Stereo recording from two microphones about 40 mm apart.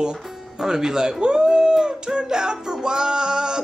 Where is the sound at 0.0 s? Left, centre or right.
Centre.